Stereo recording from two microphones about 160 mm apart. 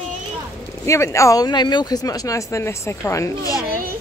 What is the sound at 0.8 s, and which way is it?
Speech, 20° left (ahead or behind).